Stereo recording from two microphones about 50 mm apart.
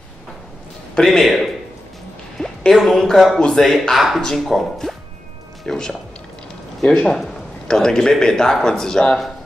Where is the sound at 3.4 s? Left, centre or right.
Centre.